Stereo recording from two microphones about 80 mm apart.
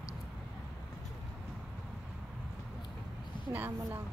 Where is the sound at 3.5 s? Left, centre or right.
Right.